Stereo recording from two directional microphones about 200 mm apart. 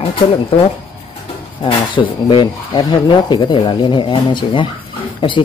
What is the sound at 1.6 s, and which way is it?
A man's voice, 25° left (ahead or behind).